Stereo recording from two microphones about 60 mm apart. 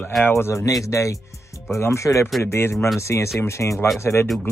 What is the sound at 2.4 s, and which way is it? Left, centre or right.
Speech, left.